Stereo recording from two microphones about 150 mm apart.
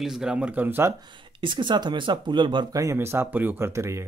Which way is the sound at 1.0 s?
35° right (ahead or behind).